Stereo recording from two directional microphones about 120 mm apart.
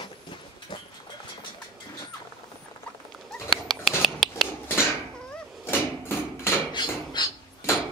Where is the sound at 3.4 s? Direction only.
Centre (ahead or behind).